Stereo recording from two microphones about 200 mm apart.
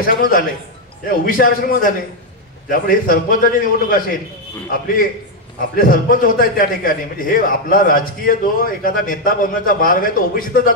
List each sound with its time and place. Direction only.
0.0 s a man's voice: 45° left (ahead or behind)